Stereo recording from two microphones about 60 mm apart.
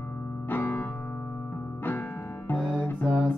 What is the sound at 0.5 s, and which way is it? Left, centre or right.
Music, left.